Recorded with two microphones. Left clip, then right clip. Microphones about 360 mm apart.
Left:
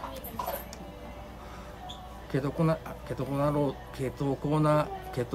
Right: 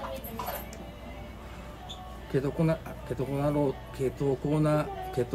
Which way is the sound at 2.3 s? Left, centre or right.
Centre.